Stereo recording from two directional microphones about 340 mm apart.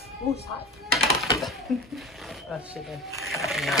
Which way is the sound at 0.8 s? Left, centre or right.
Centre.